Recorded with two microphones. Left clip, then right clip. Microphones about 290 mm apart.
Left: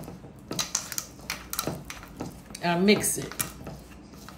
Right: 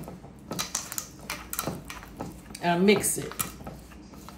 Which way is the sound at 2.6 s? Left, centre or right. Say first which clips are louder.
Right 1 dB; centre.